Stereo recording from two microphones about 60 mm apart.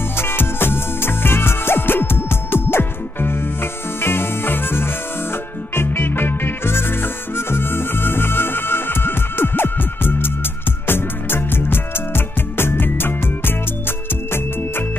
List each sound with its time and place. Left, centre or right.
0.2 s music: left